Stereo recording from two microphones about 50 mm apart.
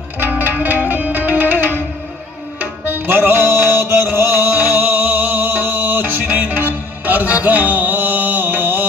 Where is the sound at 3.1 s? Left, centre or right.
Right.